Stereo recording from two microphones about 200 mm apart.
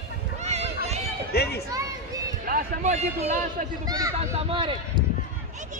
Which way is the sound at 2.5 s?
45° right (ahead or behind).